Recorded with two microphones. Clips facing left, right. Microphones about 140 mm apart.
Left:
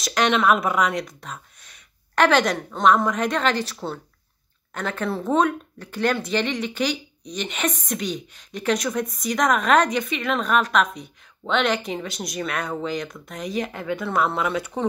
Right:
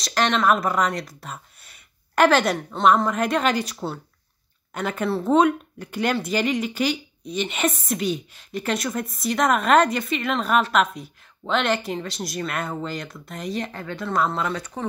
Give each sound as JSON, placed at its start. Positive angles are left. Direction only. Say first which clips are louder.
{"t": 0.0, "sound": "a woman's voice", "louder": "left 1 dB", "side_deg": 0}